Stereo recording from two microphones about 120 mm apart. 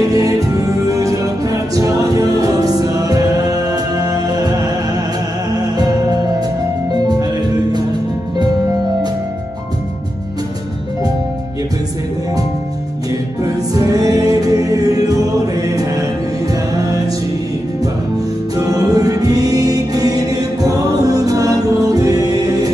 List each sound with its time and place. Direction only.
0.1 s music: 30° right (ahead or behind)
13.4 s music: 30° right (ahead or behind)
18.6 s choir: 30° right (ahead or behind)